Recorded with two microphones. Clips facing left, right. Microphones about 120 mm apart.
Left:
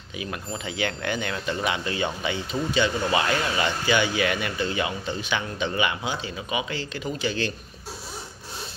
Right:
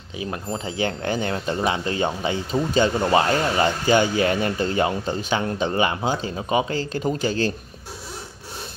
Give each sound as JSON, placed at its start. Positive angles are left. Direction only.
{"t": 0.2, "sound": "speech", "side_deg": -30}